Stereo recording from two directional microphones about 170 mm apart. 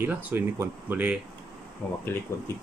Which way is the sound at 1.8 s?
10° left (ahead or behind).